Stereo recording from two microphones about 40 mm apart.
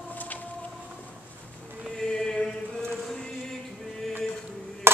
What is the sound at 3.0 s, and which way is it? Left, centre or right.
Chant, centre.